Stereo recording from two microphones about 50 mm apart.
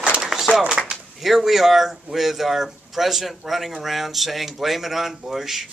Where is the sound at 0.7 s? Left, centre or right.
Centre.